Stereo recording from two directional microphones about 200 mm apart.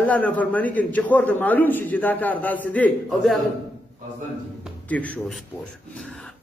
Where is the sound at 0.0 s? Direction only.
5° left (ahead or behind).